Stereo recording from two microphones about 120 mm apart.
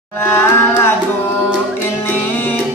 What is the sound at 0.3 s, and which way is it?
Music, 20° left (ahead or behind).